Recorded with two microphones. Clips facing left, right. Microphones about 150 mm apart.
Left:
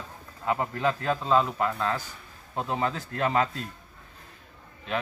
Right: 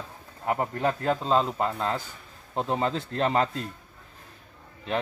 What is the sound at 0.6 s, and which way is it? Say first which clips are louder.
Speech: right 1 dB; 25° right (ahead or behind).